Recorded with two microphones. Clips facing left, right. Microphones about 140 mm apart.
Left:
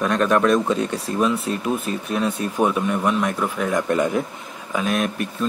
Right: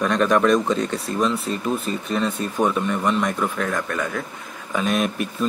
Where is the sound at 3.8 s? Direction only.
20° left (ahead or behind).